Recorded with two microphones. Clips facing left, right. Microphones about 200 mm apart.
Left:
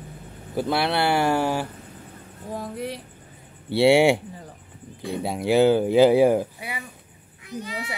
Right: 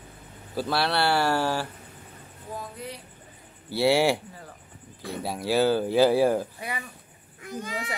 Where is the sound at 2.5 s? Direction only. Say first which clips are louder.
Left 6 dB; 30° left (ahead or behind).